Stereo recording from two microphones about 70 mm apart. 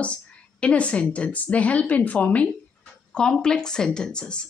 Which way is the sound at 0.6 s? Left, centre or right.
Centre.